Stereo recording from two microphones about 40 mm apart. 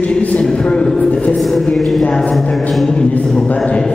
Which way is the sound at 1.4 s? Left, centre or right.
Centre.